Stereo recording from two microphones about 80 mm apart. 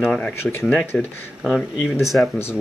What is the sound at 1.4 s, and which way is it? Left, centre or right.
Speech, centre.